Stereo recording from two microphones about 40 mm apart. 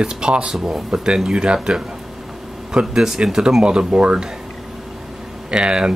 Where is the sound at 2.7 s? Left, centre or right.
Centre.